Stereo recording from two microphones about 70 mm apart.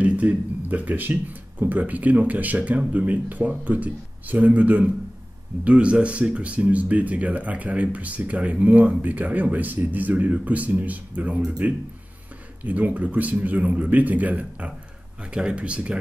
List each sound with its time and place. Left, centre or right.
0.0 s speech: right